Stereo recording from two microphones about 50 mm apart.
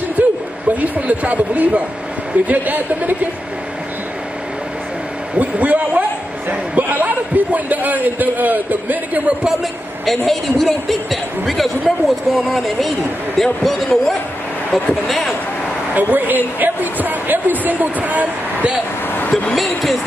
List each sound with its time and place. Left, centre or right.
0.2 s a sound: right
0.7 s speech: right
5.4 s a man's voice: right
9.4 s a woman's voice: centre
15.9 s speech: right
19.5 s a woman's voice: centre